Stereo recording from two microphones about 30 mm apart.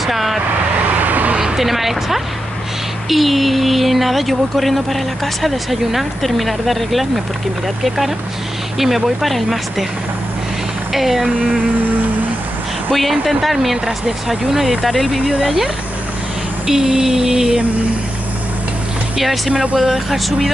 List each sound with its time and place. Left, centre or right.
0.0 s speech: centre
0.9 s vehicle: right
1.6 s speech: centre
10.9 s speech: centre
12.9 s speech: centre
13.8 s a sound: right
14.5 s speech: centre
16.6 s a sound: right
19.1 s speech: centre
19.5 s speech: right
19.8 s speech: centre